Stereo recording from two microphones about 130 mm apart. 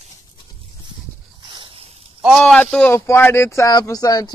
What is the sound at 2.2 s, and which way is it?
Speech, 5° left (ahead or behind).